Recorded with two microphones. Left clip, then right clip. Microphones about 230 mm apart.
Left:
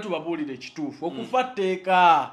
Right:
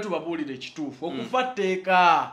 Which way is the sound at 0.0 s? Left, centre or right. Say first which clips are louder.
Even; left.